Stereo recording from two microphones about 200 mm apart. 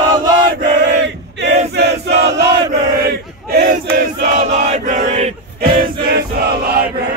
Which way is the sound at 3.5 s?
50° right (ahead or behind).